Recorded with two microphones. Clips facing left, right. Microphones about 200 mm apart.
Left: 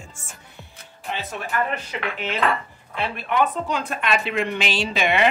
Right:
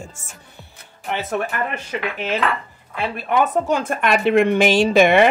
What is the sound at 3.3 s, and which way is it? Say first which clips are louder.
A woman's voice: right 5 dB; 45° right (ahead or behind).